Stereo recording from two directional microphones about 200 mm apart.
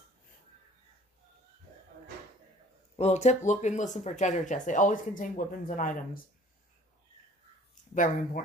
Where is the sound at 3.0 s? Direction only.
35° left (ahead or behind).